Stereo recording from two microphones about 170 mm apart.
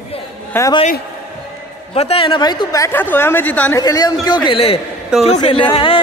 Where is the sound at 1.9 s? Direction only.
35° left (ahead or behind); by 3.7 s 10° left (ahead or behind).